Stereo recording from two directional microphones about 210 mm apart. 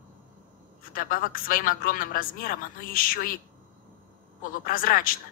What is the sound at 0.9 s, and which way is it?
Speech, 40° left (ahead or behind).